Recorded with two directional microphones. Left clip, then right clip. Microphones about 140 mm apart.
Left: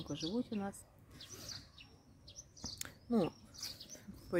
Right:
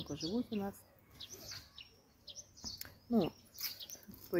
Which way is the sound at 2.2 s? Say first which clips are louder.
Right 1 dB; 60° left (ahead or behind).